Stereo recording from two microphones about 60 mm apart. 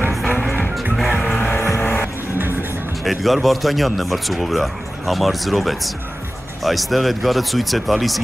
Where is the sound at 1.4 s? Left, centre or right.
Left.